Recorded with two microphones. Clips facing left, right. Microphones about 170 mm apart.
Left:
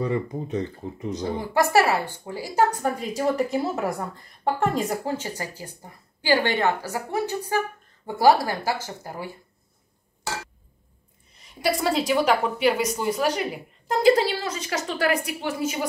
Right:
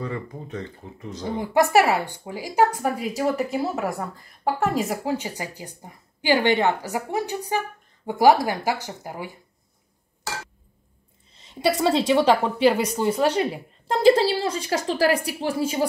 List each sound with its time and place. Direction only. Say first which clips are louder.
0.0 s speech: left 5 dB; 20° left (ahead or behind)
1.4 s a woman's voice: right 2 dB; 20° right (ahead or behind)
11.3 s a woman's voice: right 3 dB; 25° right (ahead or behind)